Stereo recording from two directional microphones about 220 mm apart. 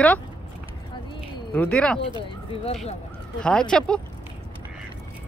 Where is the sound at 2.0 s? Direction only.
25° left (ahead or behind).